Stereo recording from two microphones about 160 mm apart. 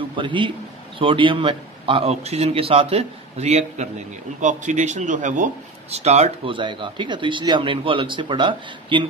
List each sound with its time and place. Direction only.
0.2 s a man's voice: 30° right (ahead or behind)